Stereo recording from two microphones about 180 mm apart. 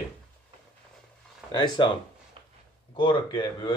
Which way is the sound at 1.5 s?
25° left (ahead or behind).